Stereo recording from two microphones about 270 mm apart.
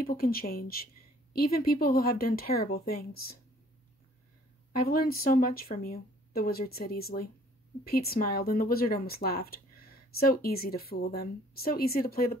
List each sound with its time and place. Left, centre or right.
0.0 s speech: left
4.7 s speech: left